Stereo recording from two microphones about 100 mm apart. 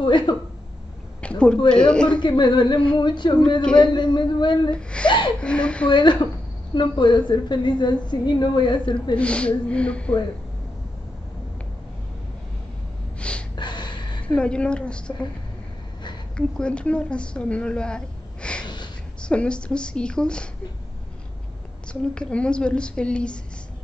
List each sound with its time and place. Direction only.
0.0 s a woman's voice: 50° left (ahead or behind)
1.2 s a sound: 10° left (ahead or behind)
1.7 s a woman's voice: 10° left (ahead or behind)
2.0 s a woman's voice: 50° left (ahead or behind)
5.4 s a woman's voice: 10° left (ahead or behind)
5.9 s a woman's voice: 50° left (ahead or behind)
9.1 s a woman's voice: 10° left (ahead or behind)
13.2 s gasp: 10° left (ahead or behind)
13.6 s gasp: 50° left (ahead or behind)
14.2 s a woman's voice: 10° left (ahead or behind)
16.3 s a woman's voice: 10° left (ahead or behind)
22.1 s a woman's voice: 10° left (ahead or behind)